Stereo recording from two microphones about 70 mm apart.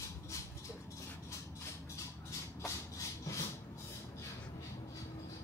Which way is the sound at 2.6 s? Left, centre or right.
Left.